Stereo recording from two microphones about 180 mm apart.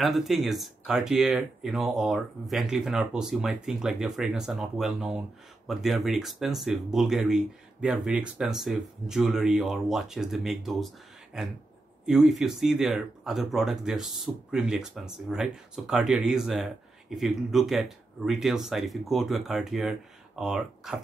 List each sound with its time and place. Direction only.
0.0 s speech: centre (ahead or behind)
12.1 s speech: centre (ahead or behind)